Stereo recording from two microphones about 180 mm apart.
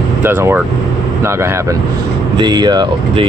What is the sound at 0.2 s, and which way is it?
Speech, 10° right (ahead or behind).